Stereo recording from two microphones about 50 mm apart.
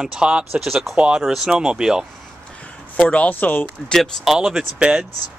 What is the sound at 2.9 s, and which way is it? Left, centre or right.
Speech, left.